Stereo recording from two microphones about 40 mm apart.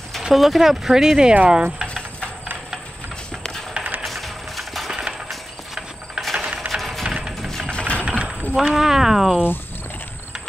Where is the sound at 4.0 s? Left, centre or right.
Centre.